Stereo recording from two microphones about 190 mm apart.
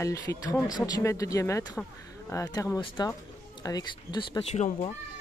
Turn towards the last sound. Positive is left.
turn(degrees=35)  # may be behind; listen again after turning